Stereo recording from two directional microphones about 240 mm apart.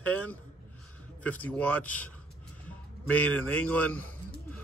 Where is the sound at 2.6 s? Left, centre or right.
Centre.